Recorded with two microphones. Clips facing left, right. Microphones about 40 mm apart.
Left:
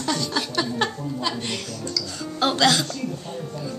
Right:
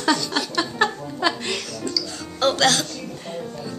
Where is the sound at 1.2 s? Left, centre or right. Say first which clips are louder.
Right 7 dB; right.